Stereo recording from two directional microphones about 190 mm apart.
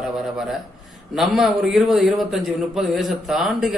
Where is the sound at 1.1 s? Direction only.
Centre (ahead or behind).